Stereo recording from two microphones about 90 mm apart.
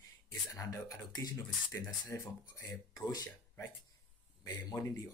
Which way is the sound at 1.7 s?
30° left (ahead or behind).